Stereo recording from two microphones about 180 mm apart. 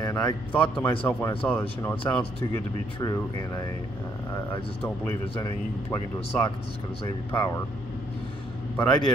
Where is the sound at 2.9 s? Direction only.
20° left (ahead or behind).